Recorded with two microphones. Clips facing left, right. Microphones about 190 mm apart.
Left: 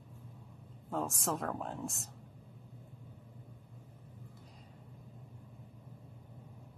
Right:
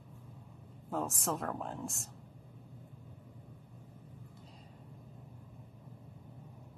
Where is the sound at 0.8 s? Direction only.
Centre (ahead or behind).